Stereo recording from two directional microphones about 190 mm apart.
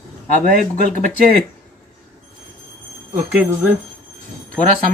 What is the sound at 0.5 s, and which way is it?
Speech, 45° right (ahead or behind).